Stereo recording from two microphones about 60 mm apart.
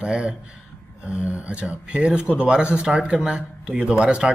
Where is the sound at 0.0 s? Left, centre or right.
Centre.